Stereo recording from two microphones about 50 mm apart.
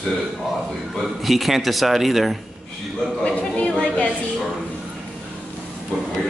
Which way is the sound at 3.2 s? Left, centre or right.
Left.